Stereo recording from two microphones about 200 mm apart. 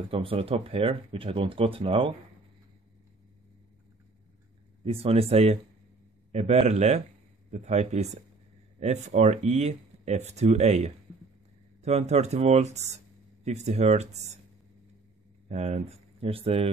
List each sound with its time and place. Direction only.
0.1 s speech: 25° right (ahead or behind)
4.9 s speech: 30° right (ahead or behind)
15.4 s speech: 30° right (ahead or behind)